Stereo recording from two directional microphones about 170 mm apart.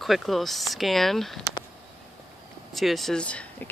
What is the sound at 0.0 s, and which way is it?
Speech, centre (ahead or behind).